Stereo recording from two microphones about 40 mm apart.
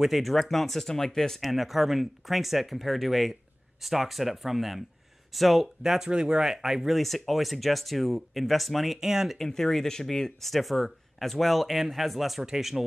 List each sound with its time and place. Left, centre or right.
0.0 s speech: centre
1.4 s speech: centre
5.8 s speech: centre
7.0 s speech: centre
9.0 s speech: centre
9.4 s speech: centre